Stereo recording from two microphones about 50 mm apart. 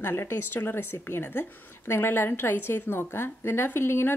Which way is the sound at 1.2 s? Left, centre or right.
Left.